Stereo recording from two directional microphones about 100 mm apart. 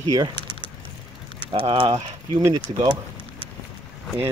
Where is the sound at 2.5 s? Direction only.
50° right (ahead or behind).